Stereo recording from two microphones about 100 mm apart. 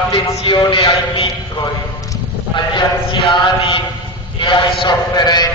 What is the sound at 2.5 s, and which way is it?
A man's voice, 55° left (ahead or behind).